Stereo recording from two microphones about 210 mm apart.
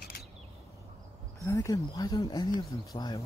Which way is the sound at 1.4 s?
15° left (ahead or behind).